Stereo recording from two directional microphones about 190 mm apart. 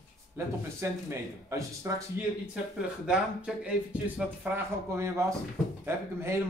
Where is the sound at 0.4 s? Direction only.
15° right (ahead or behind).